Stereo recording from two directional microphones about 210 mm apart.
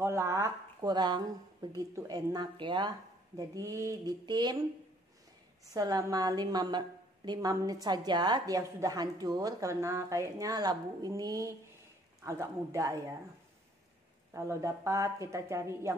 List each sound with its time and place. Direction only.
0.0 s a woman's voice: 15° right (ahead or behind)
5.7 s a woman's voice: 15° right (ahead or behind)
14.3 s a woman's voice: 15° right (ahead or behind)